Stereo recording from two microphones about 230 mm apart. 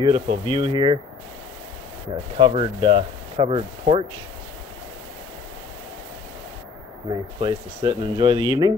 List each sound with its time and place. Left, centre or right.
0.0 s speech: centre
2.3 s speech: right
7.3 s speech: centre